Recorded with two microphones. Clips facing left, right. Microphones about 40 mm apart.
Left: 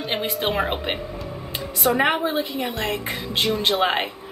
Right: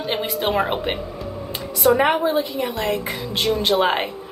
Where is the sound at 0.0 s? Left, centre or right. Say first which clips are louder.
Right 2 dB; centre.